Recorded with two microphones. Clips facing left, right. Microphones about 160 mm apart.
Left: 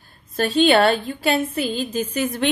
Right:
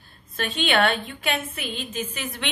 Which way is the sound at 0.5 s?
35° left (ahead or behind).